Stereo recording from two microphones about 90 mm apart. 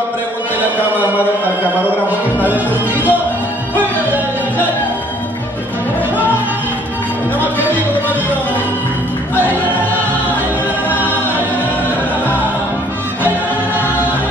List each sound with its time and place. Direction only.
2.4 s music: 20° right (ahead or behind)
11.0 s choir: 20° left (ahead or behind)